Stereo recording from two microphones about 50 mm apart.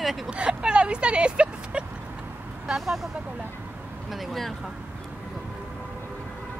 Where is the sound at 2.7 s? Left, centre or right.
Centre.